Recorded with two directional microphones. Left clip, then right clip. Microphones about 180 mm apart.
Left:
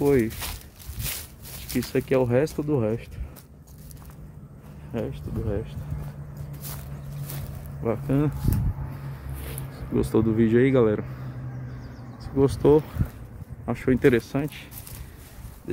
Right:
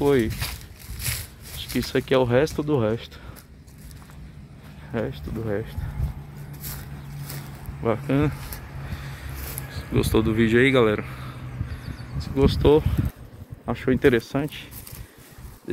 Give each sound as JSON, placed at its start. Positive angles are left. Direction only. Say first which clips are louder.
{"t": 0.0, "sound": "speech", "louder": "right 1 dB", "side_deg": 0}
{"t": 1.7, "sound": "speech", "louder": "right 2 dB", "side_deg": -5}
{"t": 4.9, "sound": "speech", "louder": "right 3 dB", "side_deg": -20}
{"t": 7.8, "sound": "speech", "louder": "right 3 dB", "side_deg": -20}
{"t": 9.9, "sound": "speech", "louder": "right 1 dB", "side_deg": 10}
{"t": 12.2, "sound": "speech", "louder": "right 1 dB", "side_deg": 15}
{"t": 14.3, "sound": "speech", "louder": "right 2 dB", "side_deg": 0}